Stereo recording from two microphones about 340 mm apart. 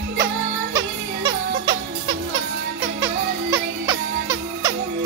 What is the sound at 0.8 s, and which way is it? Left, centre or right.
Music, centre.